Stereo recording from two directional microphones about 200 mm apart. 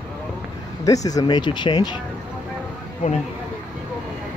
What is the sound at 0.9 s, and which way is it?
Speech, 15° left (ahead or behind).